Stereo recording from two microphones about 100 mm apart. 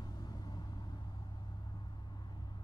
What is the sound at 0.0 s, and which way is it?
Vehicle, 40° left (ahead or behind).